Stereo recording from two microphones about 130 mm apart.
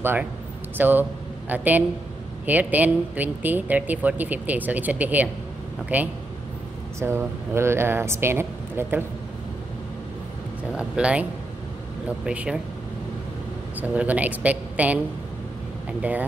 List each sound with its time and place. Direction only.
0.0 s speech: 15° right (ahead or behind)
10.7 s speech: 10° right (ahead or behind)
12.3 s speech: 10° right (ahead or behind)
13.7 s speech: 10° right (ahead or behind)